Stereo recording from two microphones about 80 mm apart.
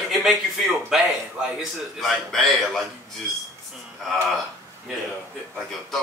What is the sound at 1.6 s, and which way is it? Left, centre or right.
A man's voice, centre.